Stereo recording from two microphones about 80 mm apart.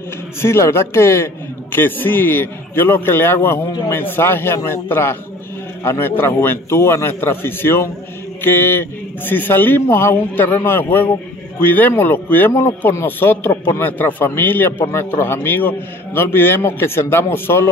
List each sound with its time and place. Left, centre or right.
0.4 s a man's voice: left